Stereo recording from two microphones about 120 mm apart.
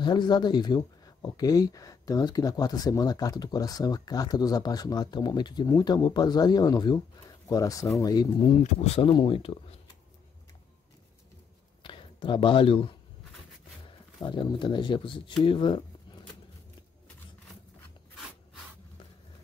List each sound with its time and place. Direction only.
0.0 s speech: 40° left (ahead or behind)
8.6 s speech: 60° left (ahead or behind)
9.1 s speech: 45° left (ahead or behind)
11.8 s speech: 45° left (ahead or behind)
14.2 s speech: 40° left (ahead or behind)